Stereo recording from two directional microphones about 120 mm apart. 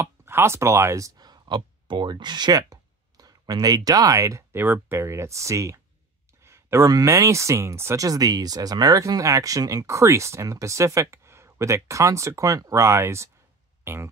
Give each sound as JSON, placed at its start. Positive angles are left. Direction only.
{"t": 0.0, "sound": "speech", "side_deg": -20}